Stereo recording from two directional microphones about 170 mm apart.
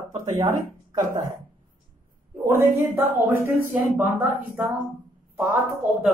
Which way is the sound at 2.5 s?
15° right (ahead or behind).